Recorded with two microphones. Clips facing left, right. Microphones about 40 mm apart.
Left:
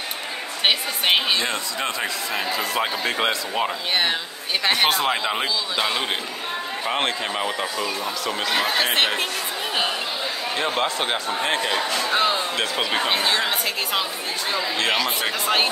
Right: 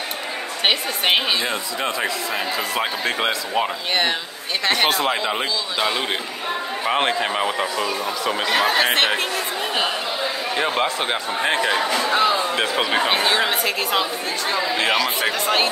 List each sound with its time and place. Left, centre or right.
0.7 s speech: centre
6.9 s speech: centre
10.5 s speech: centre
11.4 s speech: right; by 15.7 s centre